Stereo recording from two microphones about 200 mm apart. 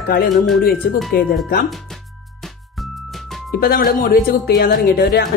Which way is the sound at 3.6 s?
50° left (ahead or behind).